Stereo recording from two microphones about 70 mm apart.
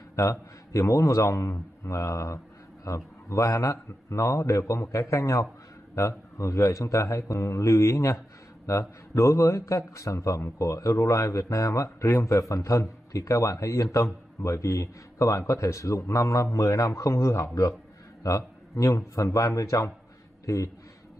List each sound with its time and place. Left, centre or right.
0.1 s a man's voice: left